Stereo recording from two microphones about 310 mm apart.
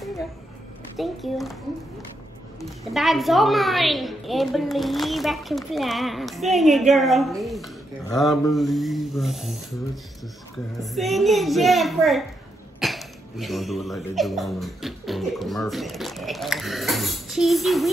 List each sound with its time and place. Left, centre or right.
0.9 s a woman's voice: centre
2.6 s a woman's voice: centre
10.8 s a woman's voice: centre